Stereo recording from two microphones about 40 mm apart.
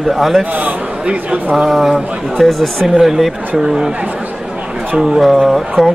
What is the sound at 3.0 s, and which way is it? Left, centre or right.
Speech, centre.